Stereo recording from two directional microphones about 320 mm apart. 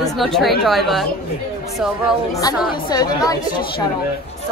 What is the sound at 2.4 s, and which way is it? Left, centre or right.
Speech, centre.